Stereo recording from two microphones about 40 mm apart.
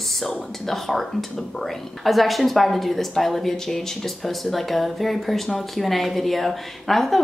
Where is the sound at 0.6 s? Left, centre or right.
Centre.